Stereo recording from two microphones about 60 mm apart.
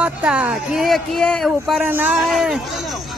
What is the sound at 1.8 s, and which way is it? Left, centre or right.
Speech, right.